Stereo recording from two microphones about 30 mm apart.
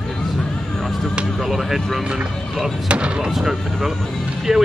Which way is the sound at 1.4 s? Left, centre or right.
Centre.